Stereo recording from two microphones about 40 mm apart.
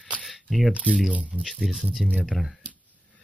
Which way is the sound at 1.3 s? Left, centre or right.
Centre.